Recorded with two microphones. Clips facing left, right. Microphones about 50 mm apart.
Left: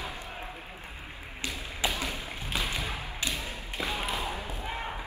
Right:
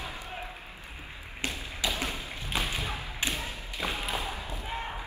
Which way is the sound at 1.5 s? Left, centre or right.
Left.